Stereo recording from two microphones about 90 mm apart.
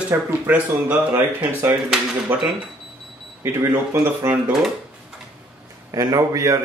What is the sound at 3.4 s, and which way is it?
Speech, 25° right (ahead or behind).